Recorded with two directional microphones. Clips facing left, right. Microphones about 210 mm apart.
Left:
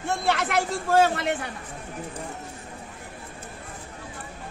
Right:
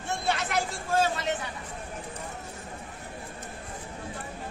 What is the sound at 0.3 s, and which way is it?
A man's voice, 60° left (ahead or behind).